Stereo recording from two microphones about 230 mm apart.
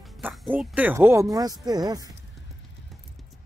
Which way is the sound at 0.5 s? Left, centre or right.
Centre.